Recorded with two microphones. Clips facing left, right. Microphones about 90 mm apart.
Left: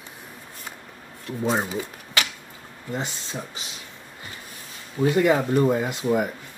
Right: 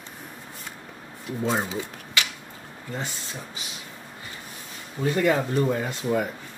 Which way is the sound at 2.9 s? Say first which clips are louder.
Left 3 dB; 20° left (ahead or behind).